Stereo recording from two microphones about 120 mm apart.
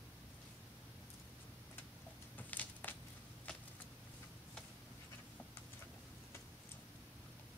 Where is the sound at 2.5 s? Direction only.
15° left (ahead or behind).